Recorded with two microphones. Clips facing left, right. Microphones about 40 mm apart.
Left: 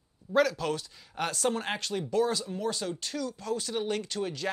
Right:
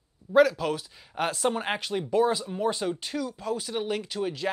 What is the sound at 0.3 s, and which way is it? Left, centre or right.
Speech, centre.